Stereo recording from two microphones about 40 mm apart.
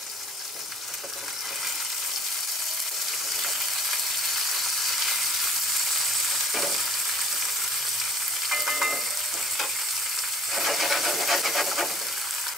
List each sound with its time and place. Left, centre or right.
3.3 s frying: centre
8.5 s frying: centre
10.5 s a sound: centre